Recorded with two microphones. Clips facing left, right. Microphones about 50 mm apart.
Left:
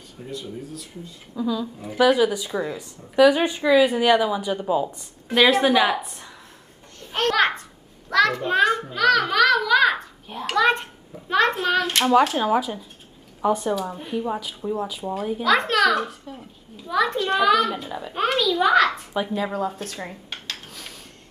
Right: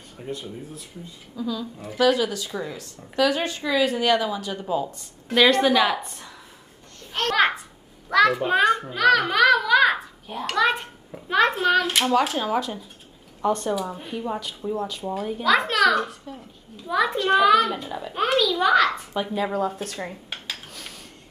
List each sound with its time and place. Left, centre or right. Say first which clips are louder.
0.3 s speech: even; right
1.3 s speech: left 4 dB; centre
7.2 s a child's voice: even; centre